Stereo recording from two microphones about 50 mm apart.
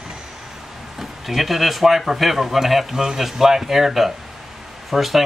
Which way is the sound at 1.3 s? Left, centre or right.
Centre.